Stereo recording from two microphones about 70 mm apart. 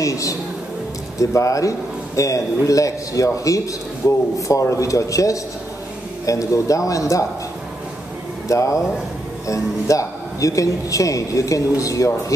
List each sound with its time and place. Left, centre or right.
0.0 s a man's voice: left
8.5 s a man's voice: left